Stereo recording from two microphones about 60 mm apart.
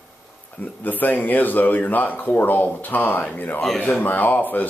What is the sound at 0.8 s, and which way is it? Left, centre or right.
A man's voice, left.